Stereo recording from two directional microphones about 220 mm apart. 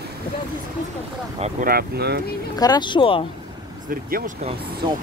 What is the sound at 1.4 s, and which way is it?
Speech, 40° right (ahead or behind).